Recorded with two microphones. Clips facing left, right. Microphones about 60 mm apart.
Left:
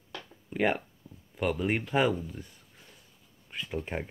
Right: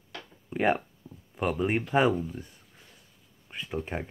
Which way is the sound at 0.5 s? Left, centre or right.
Centre.